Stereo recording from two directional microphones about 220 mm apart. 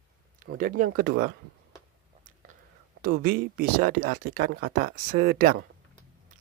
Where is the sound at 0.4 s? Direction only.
40° right (ahead or behind).